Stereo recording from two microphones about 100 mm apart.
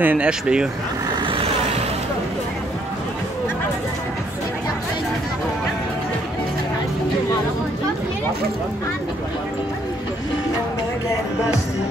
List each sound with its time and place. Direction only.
0.0 s speech: 15° right (ahead or behind)
1.2 s vehicle: 60° right (ahead or behind)